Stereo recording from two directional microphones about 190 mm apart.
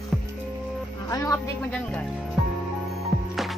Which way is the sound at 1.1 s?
20° left (ahead or behind).